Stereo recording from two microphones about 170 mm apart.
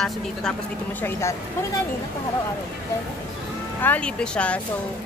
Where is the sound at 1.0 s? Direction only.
15° left (ahead or behind).